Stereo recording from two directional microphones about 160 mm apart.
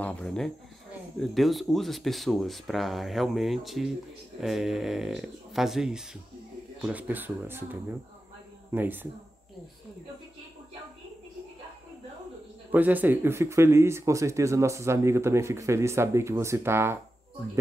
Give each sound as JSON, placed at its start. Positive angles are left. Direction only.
{"t": 0.0, "sound": "speech", "side_deg": 10}
{"t": 8.7, "sound": "speech", "side_deg": -10}
{"t": 12.7, "sound": "speech", "side_deg": -10}